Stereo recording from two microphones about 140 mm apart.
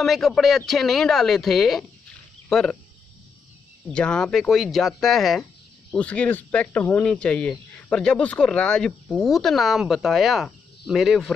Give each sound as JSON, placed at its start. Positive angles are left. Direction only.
{"t": 0.0, "sound": "speech", "side_deg": 0}
{"t": 3.9, "sound": "speech", "side_deg": 5}